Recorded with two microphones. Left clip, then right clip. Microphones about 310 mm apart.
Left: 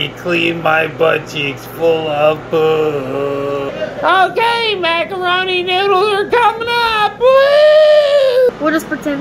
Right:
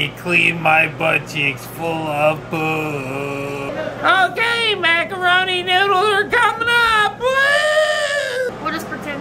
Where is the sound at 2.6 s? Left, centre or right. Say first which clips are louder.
Left 8 dB; centre.